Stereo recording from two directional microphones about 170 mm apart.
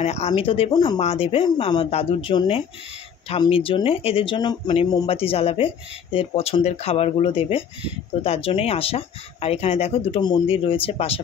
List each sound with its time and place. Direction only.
0.0 s speech: 40° left (ahead or behind)
0.9 s speech: 40° left (ahead or behind)